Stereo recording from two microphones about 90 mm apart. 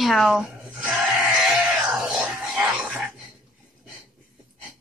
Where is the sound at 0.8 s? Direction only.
5° right (ahead or behind).